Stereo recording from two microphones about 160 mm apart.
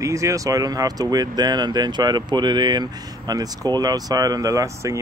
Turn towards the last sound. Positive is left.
turn(degrees=-20)  # may be behind; listen again after turning